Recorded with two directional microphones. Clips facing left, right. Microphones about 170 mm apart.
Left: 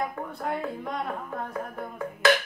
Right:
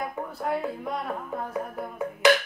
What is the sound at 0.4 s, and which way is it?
Speech, 5° right (ahead or behind).